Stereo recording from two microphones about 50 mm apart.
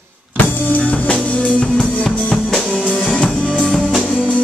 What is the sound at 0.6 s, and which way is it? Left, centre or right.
Music, left.